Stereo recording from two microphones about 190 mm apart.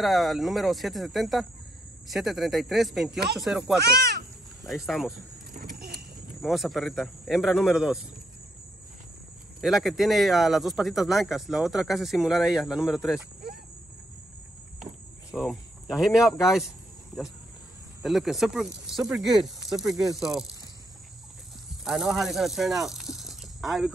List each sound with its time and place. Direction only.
0.0 s speech: centre (ahead or behind)
5.5 s a sound: 45° right (ahead or behind)
6.4 s speech: centre (ahead or behind)
9.6 s speech: centre (ahead or behind)
15.3 s speech: centre (ahead or behind)
18.0 s speech: centre (ahead or behind)
21.8 s speech: centre (ahead or behind)